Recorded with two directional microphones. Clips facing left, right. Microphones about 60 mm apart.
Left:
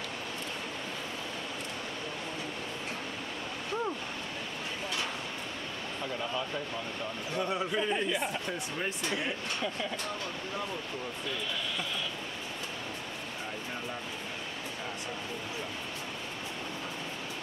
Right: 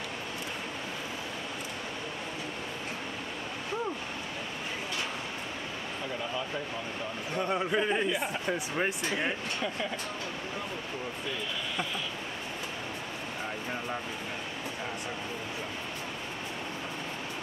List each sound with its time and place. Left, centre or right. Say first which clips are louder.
7.3 s speech: right 2 dB; centre
7.7 s speech: right 4 dB; right
8.1 s speech: right 1 dB; centre
9.6 s speech: right 1 dB; centre